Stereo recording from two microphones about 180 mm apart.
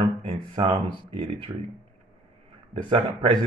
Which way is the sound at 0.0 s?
30° right (ahead or behind).